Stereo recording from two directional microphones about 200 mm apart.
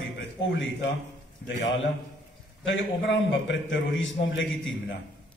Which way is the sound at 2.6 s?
70° left (ahead or behind).